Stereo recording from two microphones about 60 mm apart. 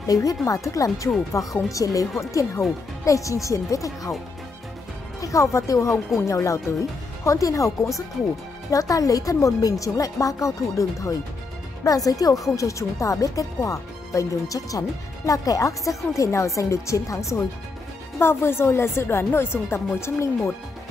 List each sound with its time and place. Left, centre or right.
0.0 s a woman's voice: left
5.2 s speech: left
5.9 s speech: centre
6.1 s a woman's voice: left
11.8 s speech: left
18.2 s speech: left